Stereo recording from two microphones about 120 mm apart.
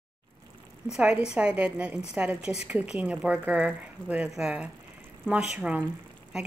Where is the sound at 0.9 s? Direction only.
5° right (ahead or behind).